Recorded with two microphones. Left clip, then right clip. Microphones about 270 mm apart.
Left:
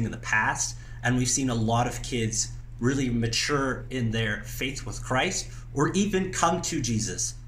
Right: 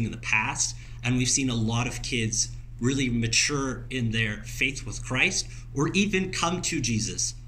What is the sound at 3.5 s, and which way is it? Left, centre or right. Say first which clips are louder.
Speech: left 3 dB; centre.